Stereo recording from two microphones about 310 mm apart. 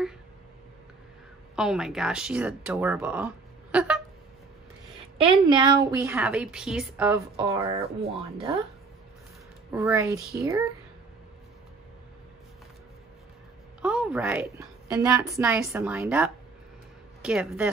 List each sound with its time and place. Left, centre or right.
1.5 s speech: centre
5.1 s a woman's voice: centre
9.7 s a woman's voice: centre
13.7 s a woman's voice: centre